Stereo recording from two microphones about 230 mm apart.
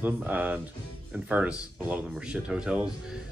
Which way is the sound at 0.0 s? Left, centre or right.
Centre.